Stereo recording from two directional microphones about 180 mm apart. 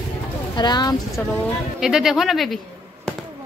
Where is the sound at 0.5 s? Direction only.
25° left (ahead or behind).